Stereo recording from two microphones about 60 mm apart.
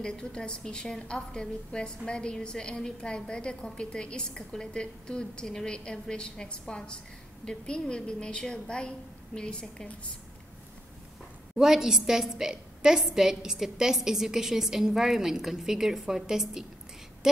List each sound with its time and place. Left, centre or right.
0.0 s a woman's voice: centre
11.5 s a woman's voice: centre